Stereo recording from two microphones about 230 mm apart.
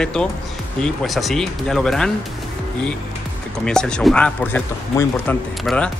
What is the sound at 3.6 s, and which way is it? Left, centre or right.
A man's voice, centre.